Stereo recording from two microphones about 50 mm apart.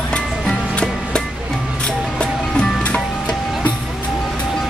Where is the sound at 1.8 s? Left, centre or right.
Centre.